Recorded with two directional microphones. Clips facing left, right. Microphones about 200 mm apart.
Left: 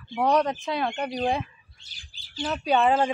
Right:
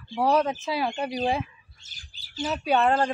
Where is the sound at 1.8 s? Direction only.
45° right (ahead or behind).